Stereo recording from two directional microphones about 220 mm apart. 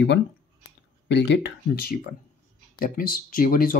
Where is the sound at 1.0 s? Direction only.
50° left (ahead or behind).